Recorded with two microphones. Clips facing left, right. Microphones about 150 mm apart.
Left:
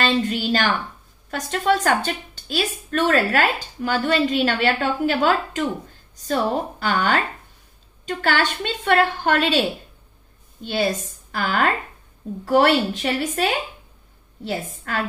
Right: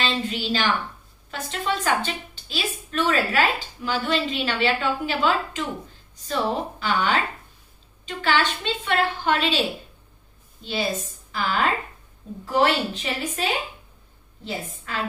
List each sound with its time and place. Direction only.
0.0 s a woman's voice: 50° left (ahead or behind)
14.9 s a woman's voice: 50° left (ahead or behind)